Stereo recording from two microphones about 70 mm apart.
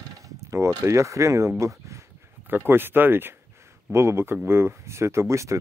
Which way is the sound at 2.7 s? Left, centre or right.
Right.